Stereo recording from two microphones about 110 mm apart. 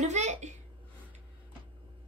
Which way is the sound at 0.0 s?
90° right.